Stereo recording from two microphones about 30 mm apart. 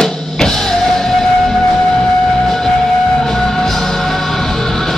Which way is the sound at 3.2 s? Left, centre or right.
Centre.